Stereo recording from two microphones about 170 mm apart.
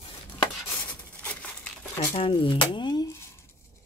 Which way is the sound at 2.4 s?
30° left (ahead or behind).